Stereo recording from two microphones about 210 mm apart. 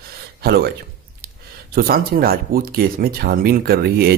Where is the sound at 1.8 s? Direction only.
45° right (ahead or behind).